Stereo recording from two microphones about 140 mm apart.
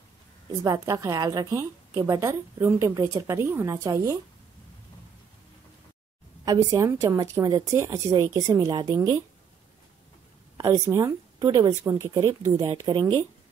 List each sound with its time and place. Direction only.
0.5 s a woman's voice: 25° right (ahead or behind)
6.4 s a woman's voice: 25° right (ahead or behind)
10.6 s a woman's voice: 25° right (ahead or behind)
12.3 s a woman's voice: 20° right (ahead or behind)
12.5 s a woman's voice: 30° right (ahead or behind)